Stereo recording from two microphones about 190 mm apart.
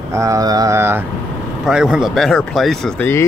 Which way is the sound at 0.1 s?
15° right (ahead or behind).